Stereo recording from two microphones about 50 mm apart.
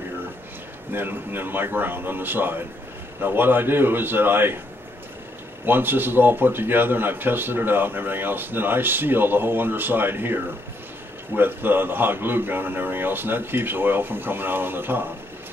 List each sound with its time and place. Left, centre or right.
0.9 s a man's voice: right
5.7 s a man's voice: right